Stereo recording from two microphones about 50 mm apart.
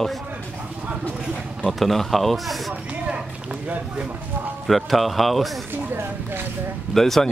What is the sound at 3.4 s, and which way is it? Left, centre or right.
Speech, right.